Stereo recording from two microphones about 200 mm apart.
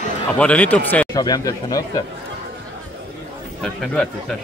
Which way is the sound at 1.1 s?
20° left (ahead or behind).